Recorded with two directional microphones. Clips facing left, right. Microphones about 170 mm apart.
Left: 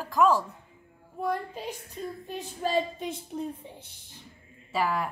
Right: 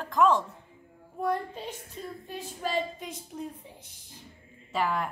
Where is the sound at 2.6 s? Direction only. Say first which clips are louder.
Left 3 dB; 30° left (ahead or behind).